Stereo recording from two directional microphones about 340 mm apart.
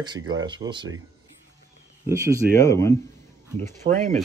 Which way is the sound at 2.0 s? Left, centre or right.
Centre.